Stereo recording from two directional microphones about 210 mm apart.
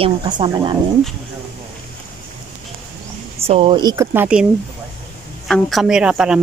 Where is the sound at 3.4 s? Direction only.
25° right (ahead or behind); by 4.4 s 5° right (ahead or behind).